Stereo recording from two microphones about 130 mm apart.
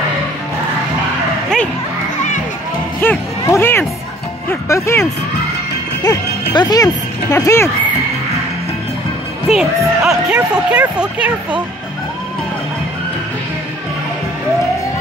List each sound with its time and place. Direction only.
3.0 s a sound: 20° left (ahead or behind)
4.5 s speech: 20° left (ahead or behind)
6.0 s speech: 30° left (ahead or behind)
9.5 s speech: 5° right (ahead or behind)